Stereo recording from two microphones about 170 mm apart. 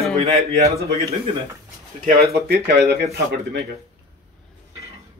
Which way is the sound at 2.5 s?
80° right.